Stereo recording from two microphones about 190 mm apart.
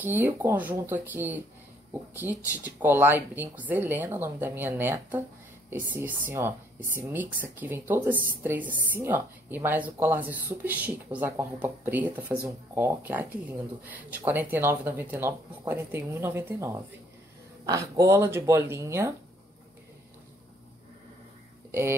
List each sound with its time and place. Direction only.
0.0 s speech: 10° right (ahead or behind)